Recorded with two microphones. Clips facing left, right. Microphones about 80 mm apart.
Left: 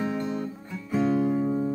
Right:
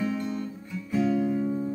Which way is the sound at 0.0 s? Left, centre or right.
Left.